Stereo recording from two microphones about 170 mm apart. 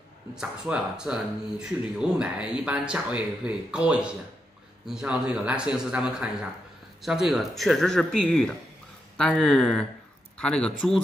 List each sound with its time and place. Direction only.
0.4 s a man's voice: 5° right (ahead or behind)